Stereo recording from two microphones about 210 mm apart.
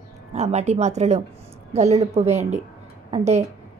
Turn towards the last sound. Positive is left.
turn(degrees=-30)  # may be behind; listen again after turning